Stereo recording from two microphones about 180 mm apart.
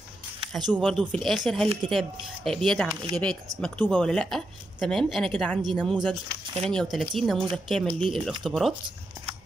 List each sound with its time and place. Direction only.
0.7 s speech: centre (ahead or behind)
2.9 s speech: 25° right (ahead or behind)
3.6 s speech: 5° left (ahead or behind)